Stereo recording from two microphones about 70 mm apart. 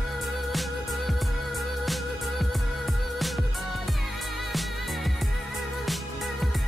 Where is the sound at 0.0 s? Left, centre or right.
Centre.